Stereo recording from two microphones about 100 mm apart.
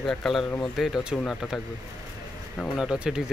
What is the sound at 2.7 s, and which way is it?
Speech, 5° right (ahead or behind).